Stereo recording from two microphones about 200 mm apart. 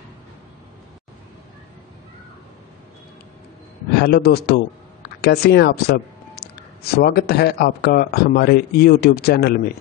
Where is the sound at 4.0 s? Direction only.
50° left (ahead or behind).